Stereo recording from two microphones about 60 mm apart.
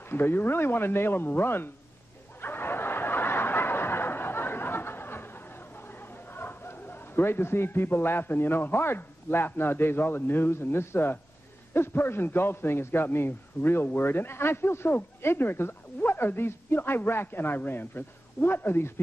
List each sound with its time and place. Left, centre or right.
0.1 s a man's voice: left
2.4 s snicker: left
6.3 s a man's voice: left